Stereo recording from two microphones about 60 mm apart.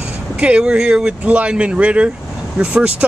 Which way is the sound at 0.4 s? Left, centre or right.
Centre.